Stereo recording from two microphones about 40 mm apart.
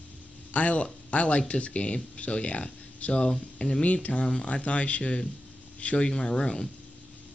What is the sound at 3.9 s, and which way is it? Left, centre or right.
Speech, left.